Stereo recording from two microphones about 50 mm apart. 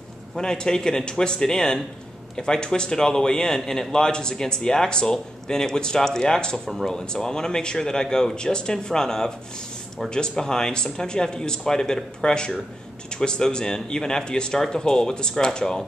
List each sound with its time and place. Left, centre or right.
0.4 s a man's voice: centre